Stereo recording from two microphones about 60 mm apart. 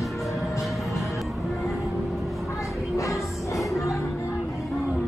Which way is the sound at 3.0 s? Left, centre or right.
Left.